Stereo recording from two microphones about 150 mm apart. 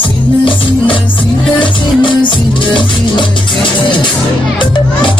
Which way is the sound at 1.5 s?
35° left (ahead or behind).